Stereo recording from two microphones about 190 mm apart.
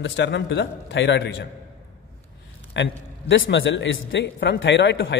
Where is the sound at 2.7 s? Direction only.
70° left (ahead or behind).